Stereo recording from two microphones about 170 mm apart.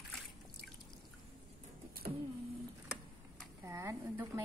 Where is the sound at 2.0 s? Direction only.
65° right (ahead or behind).